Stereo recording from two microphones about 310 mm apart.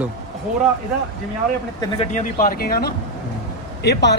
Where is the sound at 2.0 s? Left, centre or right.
Left.